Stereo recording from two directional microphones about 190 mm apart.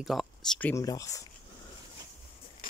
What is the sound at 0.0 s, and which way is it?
Speech, centre (ahead or behind).